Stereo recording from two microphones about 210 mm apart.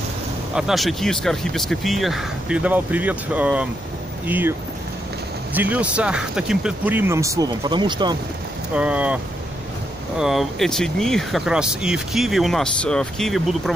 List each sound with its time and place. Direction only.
0.6 s speech: centre (ahead or behind); by 8.2 s 20° right (ahead or behind)
8.7 s speech: 5° right (ahead or behind)